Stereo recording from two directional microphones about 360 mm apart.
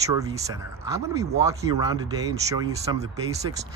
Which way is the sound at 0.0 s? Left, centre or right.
Centre.